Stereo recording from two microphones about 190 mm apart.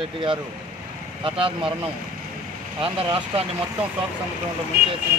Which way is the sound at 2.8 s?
30° right (ahead or behind).